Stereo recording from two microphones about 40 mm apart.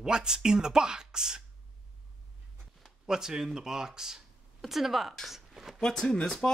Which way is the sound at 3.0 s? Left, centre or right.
Centre.